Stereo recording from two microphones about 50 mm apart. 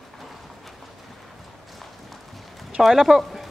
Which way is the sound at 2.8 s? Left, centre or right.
Centre.